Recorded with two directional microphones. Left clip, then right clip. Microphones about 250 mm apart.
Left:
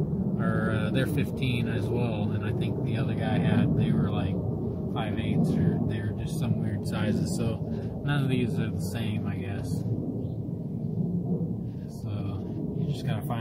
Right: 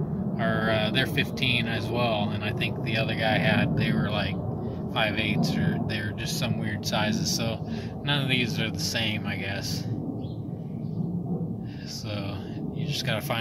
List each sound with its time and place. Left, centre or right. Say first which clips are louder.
0.4 s vehicle: right 6 dB; right
2.0 s speech: right 5 dB; centre
4.9 s speech: right 8 dB; centre
8.1 s speech: right 5 dB; centre